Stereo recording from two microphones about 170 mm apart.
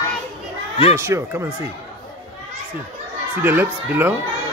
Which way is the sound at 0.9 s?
15° right (ahead or behind).